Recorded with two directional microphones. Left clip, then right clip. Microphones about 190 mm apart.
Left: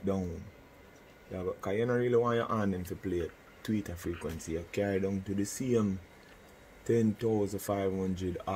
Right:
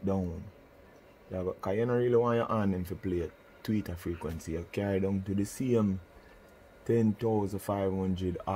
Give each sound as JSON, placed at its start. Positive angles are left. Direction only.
{"t": 1.3, "sound": "speech", "side_deg": -25}
{"t": 6.9, "sound": "speech", "side_deg": -30}